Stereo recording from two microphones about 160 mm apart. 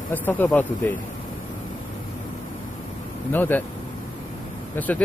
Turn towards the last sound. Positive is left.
turn(degrees=10)  # may be behind; listen again after turning